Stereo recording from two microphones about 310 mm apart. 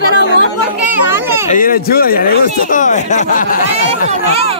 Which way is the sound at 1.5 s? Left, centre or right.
Left.